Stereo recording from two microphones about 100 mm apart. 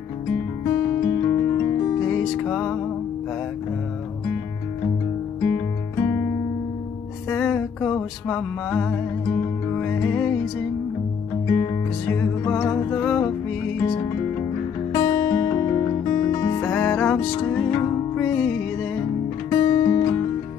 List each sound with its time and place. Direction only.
0.7 s music: 30° left (ahead or behind)
2.0 s music: 5° left (ahead or behind)
5.4 s music: 25° left (ahead or behind)
7.2 s music: 10° left (ahead or behind)
11.4 s music: 30° left (ahead or behind)
12.1 s music: 20° left (ahead or behind)
14.9 s music: 25° left (ahead or behind)
16.7 s music: 15° left (ahead or behind)
18.2 s music: 10° left (ahead or behind)
19.5 s music: 30° left (ahead or behind)